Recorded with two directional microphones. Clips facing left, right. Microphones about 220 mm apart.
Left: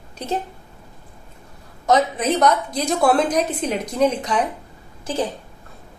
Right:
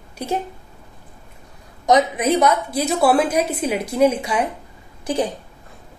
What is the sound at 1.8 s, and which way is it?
A woman's voice, 15° right (ahead or behind).